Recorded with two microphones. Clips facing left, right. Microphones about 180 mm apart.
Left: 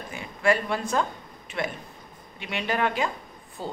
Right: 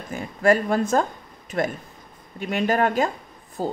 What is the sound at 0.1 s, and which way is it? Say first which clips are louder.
Speech: right 5 dB; 45° right (ahead or behind).